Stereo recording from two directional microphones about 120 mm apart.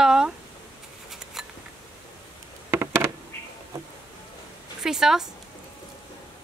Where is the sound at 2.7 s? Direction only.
20° right (ahead or behind).